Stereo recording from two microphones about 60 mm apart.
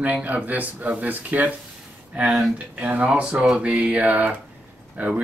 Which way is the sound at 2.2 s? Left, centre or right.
Centre.